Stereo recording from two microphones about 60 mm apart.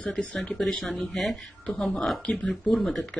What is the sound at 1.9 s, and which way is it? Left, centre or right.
Speech, centre.